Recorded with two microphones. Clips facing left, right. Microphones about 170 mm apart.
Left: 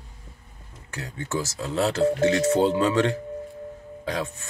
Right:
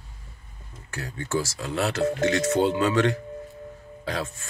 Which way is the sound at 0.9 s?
20° left (ahead or behind).